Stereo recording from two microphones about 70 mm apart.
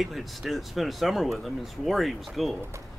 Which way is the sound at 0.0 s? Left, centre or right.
Centre.